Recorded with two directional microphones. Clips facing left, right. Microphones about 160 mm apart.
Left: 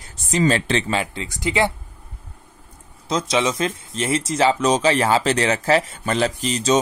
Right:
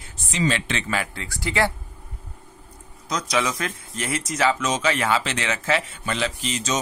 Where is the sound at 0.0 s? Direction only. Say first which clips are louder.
Left 5 dB; 40° left (ahead or behind); by 1.7 s 20° left (ahead or behind).